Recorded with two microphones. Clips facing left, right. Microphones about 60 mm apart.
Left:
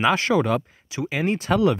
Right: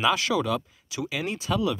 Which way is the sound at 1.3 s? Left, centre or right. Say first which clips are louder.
Left 7 dB; left.